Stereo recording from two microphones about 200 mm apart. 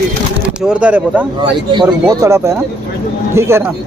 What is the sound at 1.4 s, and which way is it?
Speech, 20° right (ahead or behind).